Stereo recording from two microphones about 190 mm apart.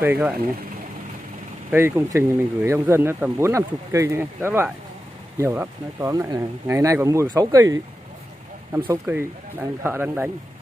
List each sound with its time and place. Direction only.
0.0 s speech: 10° right (ahead or behind)
1.7 s speech: 10° right (ahead or behind)
8.8 s speech: 15° right (ahead or behind)